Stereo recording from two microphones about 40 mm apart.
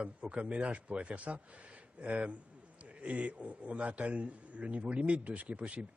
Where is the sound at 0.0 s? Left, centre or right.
Right.